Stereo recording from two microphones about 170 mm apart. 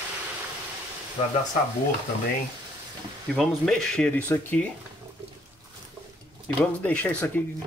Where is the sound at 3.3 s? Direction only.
Centre (ahead or behind).